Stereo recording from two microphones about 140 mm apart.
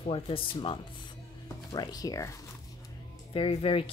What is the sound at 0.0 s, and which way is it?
Speech, 40° left (ahead or behind).